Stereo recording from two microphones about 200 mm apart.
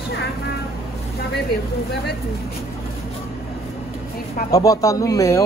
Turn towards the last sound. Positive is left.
turn(degrees=15)  # may be behind; listen again after turning